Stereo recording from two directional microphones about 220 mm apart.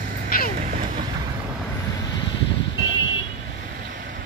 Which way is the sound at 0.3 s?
40° left (ahead or behind).